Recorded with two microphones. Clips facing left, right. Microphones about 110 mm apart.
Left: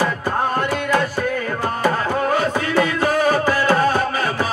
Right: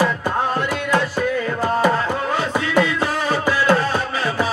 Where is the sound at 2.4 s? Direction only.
50° left (ahead or behind).